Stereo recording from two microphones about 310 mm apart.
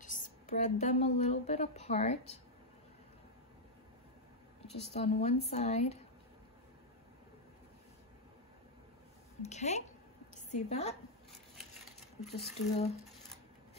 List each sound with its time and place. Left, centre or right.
0.0 s a woman's voice: left
4.9 s speech: left
9.4 s a woman's voice: left
12.4 s speech: left